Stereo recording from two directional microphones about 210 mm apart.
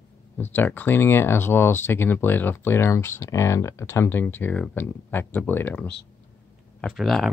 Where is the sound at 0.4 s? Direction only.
10° left (ahead or behind).